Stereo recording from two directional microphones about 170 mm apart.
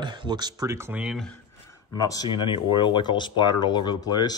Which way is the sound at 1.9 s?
20° left (ahead or behind).